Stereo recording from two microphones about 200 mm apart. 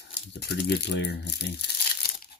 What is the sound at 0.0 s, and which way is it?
Speech, 55° left (ahead or behind).